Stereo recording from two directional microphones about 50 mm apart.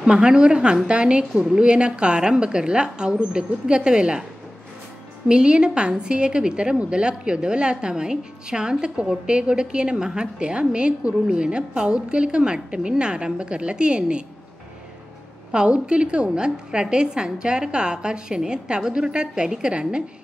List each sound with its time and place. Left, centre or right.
0.0 s a woman's voice: centre
1.3 s a woman's voice: centre
1.6 s a woman's voice: right
5.3 s a woman's voice: centre
15.5 s a woman's voice: centre